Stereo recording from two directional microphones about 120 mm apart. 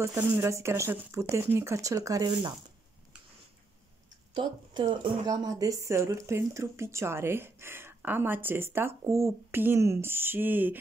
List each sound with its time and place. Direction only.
0.0 s a woman's voice: 25° right (ahead or behind)
4.3 s a woman's voice: 40° right (ahead or behind); by 10.8 s 15° right (ahead or behind)